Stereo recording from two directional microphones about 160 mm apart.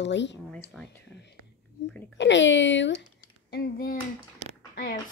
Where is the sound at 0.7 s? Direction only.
Centre (ahead or behind).